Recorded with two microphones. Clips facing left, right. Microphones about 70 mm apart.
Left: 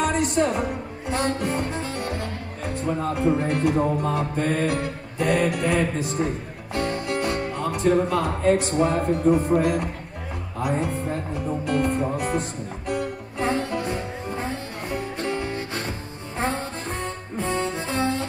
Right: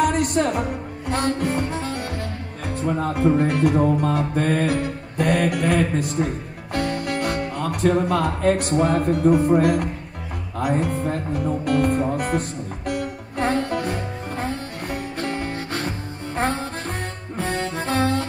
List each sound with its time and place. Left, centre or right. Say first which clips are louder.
0.0 s music: right 2 dB; right
2.6 s speech: right 2 dB; right
5.1 s music: right 1 dB; right
6.2 s speech: even; right
13.4 s music: right 3 dB; right